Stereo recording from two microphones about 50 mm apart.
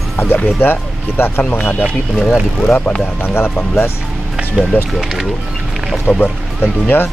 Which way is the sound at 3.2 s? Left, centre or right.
Left.